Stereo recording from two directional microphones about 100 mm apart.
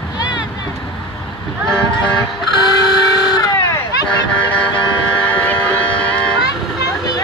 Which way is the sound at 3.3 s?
40° left (ahead or behind).